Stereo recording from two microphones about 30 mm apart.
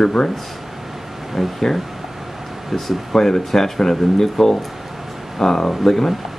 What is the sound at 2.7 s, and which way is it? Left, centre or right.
Speech, centre.